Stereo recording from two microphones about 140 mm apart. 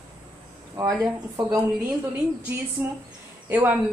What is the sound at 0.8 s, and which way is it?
Speech, 20° right (ahead or behind).